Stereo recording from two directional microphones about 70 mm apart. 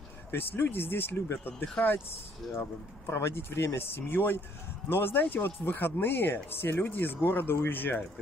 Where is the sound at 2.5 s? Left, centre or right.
Left.